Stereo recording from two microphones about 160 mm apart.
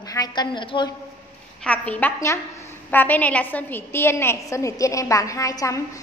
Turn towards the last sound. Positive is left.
turn(degrees=20)  # may be behind; listen again after turning